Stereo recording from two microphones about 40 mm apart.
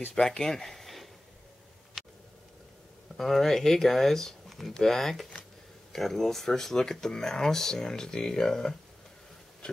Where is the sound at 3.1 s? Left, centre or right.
Centre.